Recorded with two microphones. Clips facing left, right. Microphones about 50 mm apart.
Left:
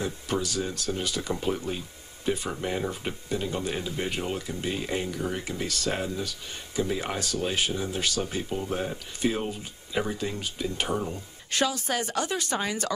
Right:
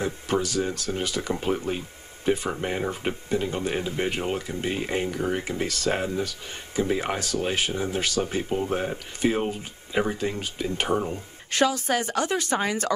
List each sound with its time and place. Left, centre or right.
0.0 s speech: right